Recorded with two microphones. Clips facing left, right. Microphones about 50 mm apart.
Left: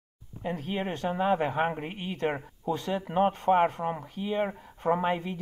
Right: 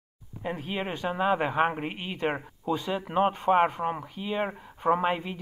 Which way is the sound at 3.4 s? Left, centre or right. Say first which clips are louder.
Right 1 dB; right.